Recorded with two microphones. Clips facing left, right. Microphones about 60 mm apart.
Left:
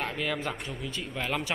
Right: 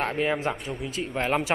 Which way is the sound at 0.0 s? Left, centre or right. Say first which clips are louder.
Right 6 dB; right.